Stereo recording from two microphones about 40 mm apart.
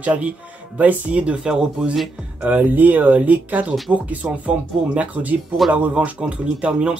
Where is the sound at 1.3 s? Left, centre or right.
Centre.